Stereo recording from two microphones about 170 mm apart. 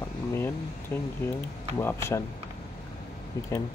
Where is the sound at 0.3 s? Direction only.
15° left (ahead or behind).